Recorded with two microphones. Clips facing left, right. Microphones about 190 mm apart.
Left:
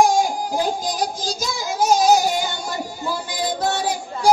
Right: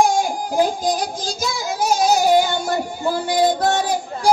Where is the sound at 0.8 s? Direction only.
55° right (ahead or behind).